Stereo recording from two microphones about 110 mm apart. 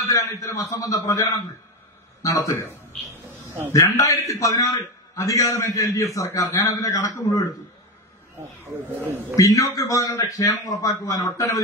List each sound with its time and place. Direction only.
0.0 s a man's voice: 30° left (ahead or behind)
2.2 s a man's voice: 35° left (ahead or behind)
3.7 s a man's voice: 30° left (ahead or behind)
9.3 s a man's voice: 30° left (ahead or behind)